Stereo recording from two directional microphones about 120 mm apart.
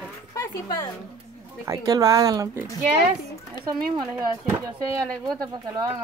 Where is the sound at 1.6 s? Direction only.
30° right (ahead or behind).